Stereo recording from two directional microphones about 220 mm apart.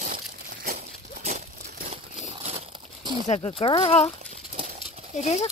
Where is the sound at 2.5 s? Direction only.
30° right (ahead or behind).